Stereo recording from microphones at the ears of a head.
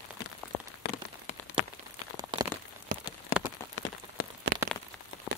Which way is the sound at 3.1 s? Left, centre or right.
Left.